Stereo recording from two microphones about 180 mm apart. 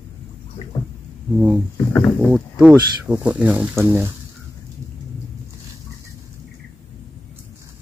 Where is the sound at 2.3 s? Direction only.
5° right (ahead or behind).